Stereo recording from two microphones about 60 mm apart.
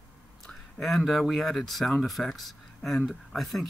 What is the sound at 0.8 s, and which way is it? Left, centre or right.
Speech, centre.